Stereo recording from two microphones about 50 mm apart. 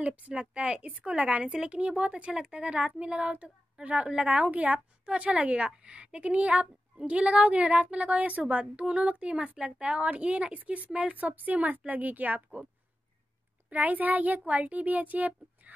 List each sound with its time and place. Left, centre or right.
0.0 s a woman's voice: right
13.7 s a woman's voice: right